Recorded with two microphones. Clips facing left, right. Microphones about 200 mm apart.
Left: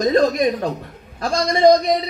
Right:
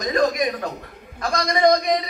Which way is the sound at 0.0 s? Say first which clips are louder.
Left 5 dB; 30° left (ahead or behind).